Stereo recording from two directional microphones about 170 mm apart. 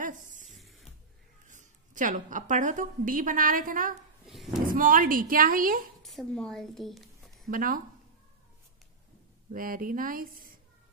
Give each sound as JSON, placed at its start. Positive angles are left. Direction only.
{"t": 0.0, "sound": "a sound", "side_deg": -50}
{"t": 0.6, "sound": "music", "side_deg": 0}
{"t": 1.5, "sound": "a woman's voice", "side_deg": -50}
{"t": 6.0, "sound": "a woman's voice", "side_deg": 0}
{"t": 7.4, "sound": "speech", "side_deg": -55}
{"t": 9.5, "sound": "speech", "side_deg": -55}